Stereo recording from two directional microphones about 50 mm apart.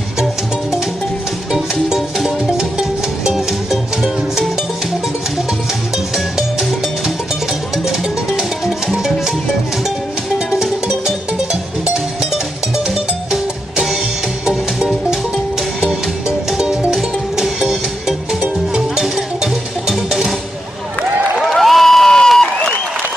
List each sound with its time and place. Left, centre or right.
0.2 s music: centre
6.1 s music: centre
7.7 s music: centre
10.5 s music: centre
19.1 s music: centre
21.4 s crowd: centre